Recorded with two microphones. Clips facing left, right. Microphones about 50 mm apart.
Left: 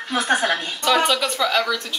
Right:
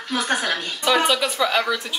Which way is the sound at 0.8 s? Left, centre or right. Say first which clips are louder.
Even; centre.